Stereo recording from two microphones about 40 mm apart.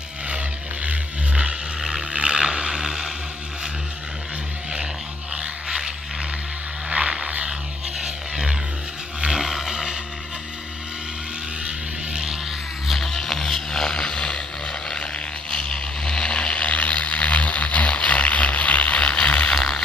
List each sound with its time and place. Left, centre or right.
0.8 s vehicle: right
1.8 s boat: centre
5.3 s a sound: right
6.9 s vehicle: right
12.8 s music: centre
13.7 s vehicle: centre
15.5 s vehicle: centre
19.5 s a sound: centre